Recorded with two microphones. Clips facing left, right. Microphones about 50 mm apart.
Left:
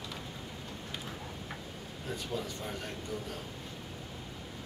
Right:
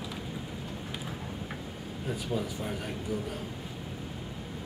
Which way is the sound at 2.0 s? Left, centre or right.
Centre.